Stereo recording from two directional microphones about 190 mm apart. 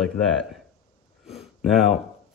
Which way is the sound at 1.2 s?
Centre (ahead or behind).